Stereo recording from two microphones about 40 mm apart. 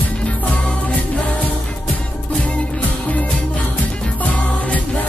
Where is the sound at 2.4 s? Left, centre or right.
Left.